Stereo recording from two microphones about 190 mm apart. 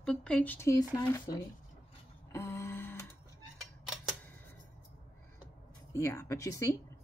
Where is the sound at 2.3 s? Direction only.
15° left (ahead or behind).